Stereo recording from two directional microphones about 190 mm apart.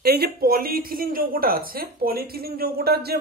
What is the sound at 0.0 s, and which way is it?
Speech, 55° right (ahead or behind).